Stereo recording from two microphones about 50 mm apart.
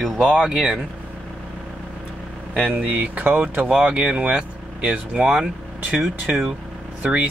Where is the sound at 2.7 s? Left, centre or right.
Right.